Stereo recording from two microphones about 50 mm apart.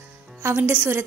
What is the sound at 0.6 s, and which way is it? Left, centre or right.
Speech, right.